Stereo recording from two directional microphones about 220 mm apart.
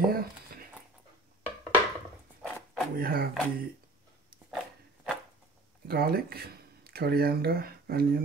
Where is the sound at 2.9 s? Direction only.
40° right (ahead or behind).